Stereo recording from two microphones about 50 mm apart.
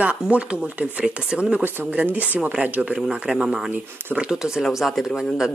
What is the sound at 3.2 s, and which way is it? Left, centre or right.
Speech, centre.